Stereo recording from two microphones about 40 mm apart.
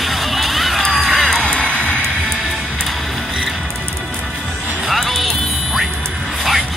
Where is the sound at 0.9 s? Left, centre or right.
Centre.